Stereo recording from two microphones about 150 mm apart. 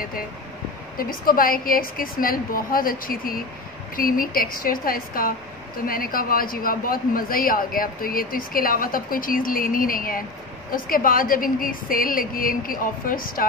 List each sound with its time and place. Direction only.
0.9 s a man's voice: 70° left (ahead or behind)